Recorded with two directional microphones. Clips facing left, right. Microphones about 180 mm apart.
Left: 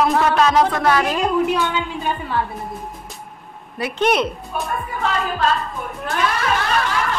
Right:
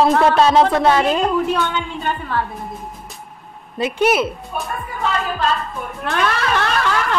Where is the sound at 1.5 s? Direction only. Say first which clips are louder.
Even; 10° left (ahead or behind).